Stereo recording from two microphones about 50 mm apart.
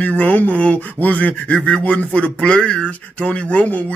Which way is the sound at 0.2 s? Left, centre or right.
Left.